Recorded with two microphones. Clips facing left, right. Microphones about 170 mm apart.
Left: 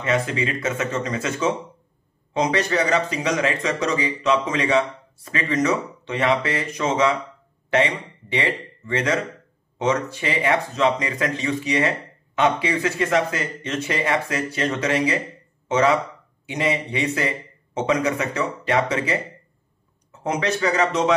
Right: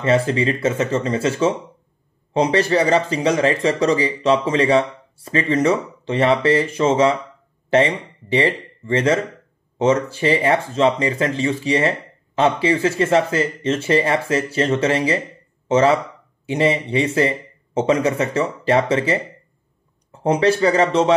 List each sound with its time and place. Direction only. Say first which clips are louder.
0.0 s speech: right 5 dB; 30° right (ahead or behind)
8.3 s speech: right 6 dB; 30° right (ahead or behind)